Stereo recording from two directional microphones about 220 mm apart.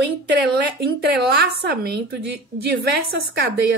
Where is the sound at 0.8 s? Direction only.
45° right (ahead or behind).